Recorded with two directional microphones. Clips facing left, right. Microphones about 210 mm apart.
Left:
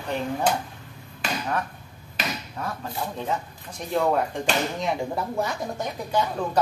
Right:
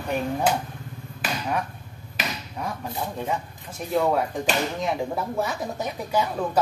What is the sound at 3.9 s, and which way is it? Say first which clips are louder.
Speech: right 1 dB; centre (ahead or behind).